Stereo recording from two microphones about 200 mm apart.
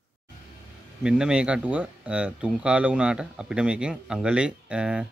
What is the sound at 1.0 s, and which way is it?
Speech, 5° right (ahead or behind).